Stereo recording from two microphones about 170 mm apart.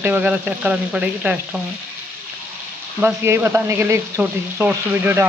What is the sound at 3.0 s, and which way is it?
Speech, 15° right (ahead or behind).